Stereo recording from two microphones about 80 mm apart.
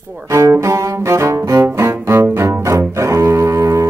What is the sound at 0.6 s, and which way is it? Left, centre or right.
Cello, right.